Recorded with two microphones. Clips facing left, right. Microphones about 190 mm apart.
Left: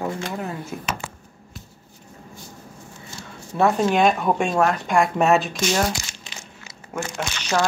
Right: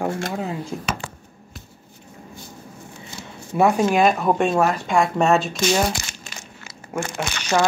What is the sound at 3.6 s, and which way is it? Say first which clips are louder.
Speech: right 1 dB; 5° right (ahead or behind).